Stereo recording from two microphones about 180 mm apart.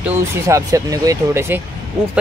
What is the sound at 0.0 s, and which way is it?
Speech, 15° right (ahead or behind).